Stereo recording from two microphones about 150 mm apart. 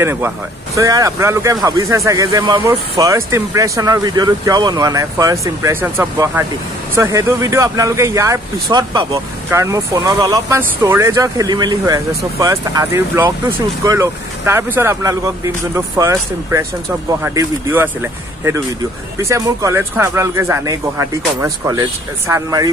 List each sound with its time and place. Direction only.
0.0 s speech: 15° right (ahead or behind)